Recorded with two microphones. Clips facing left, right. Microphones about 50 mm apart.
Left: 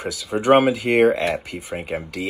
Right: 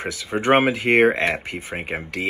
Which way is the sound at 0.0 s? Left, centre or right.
Right.